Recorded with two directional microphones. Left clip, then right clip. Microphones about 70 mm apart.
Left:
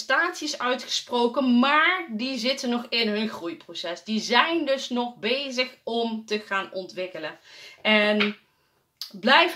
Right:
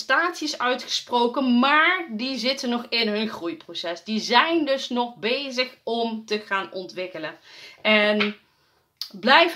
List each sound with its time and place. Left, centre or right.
0.0 s speech: right